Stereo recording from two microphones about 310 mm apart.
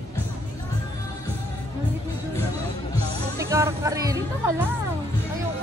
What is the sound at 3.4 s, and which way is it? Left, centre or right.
Music, centre.